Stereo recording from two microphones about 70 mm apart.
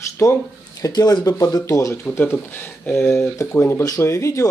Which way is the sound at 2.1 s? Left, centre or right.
Left.